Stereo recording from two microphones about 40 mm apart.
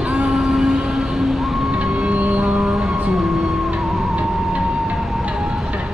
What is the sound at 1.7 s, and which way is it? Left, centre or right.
Vehicle, right.